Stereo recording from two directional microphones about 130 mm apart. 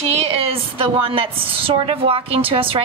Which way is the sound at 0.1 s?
50° right (ahead or behind).